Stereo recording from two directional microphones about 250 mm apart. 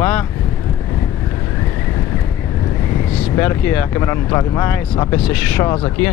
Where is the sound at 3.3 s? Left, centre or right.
Centre.